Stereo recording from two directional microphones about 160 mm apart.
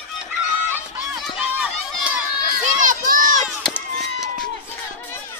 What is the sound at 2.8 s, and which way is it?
Run, 55° right (ahead or behind).